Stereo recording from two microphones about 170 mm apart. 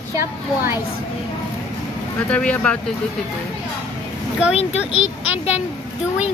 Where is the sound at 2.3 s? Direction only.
5° left (ahead or behind).